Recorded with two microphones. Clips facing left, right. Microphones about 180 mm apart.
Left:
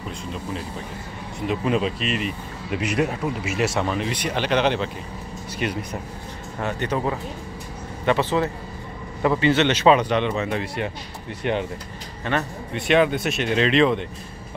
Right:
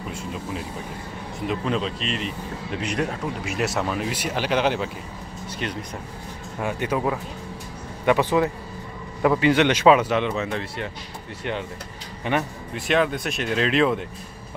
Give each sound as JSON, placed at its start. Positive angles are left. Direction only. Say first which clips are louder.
{"t": 1.5, "sound": "speech", "louder": "left 3 dB", "side_deg": 10}
{"t": 5.6, "sound": "speech", "louder": "left 4 dB", "side_deg": 10}
{"t": 6.6, "sound": "speech", "louder": "even", "side_deg": -10}
{"t": 11.4, "sound": "speech", "louder": "left 5 dB", "side_deg": 20}
{"t": 12.3, "sound": "speech", "louder": "right 1 dB", "side_deg": -15}
{"t": 12.7, "sound": "speech", "louder": "left 3 dB", "side_deg": 0}